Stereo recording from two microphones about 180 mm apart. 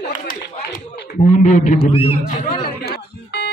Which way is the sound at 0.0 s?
55° left (ahead or behind).